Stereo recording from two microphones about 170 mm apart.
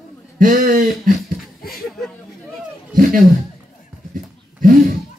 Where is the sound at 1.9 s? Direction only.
Centre (ahead or behind).